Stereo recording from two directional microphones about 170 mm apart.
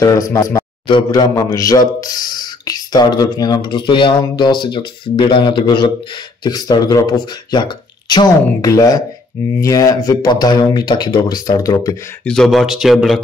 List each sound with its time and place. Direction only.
0.0 s a man's voice: 20° left (ahead or behind)
0.8 s a man's voice: 25° left (ahead or behind)
12.3 s speech: centre (ahead or behind)